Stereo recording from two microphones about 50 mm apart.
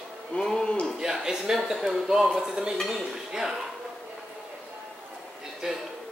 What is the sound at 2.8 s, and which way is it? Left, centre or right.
Speech, centre.